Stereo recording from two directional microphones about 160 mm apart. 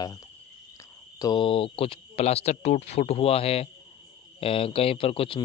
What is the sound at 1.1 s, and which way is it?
A man's voice, 25° left (ahead or behind).